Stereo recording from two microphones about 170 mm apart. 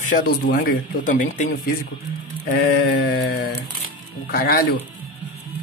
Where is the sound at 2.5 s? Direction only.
65° left (ahead or behind).